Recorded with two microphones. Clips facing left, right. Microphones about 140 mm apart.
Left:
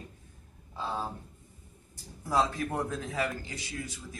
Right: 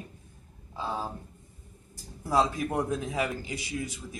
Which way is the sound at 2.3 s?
15° right (ahead or behind).